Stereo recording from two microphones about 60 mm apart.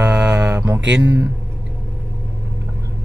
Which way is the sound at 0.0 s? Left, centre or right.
Right.